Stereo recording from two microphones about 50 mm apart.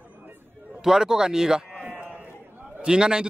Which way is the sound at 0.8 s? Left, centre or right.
Centre.